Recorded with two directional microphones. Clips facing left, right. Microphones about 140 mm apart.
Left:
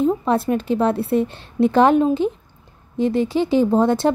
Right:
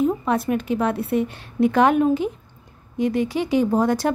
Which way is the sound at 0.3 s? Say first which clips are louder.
Left 3 dB; 30° left (ahead or behind).